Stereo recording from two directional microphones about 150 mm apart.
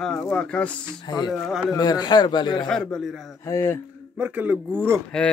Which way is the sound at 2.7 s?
5° left (ahead or behind).